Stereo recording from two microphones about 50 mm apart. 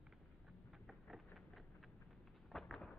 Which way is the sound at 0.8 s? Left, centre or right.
Centre.